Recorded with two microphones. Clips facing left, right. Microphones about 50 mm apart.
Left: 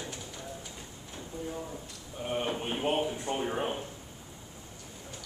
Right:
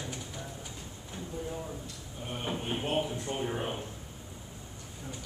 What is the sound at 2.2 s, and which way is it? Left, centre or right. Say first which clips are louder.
Speech: left 4 dB; left.